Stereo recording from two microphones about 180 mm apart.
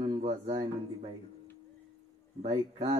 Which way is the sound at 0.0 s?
30° right (ahead or behind).